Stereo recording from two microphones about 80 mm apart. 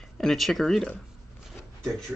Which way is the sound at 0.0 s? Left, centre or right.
Centre.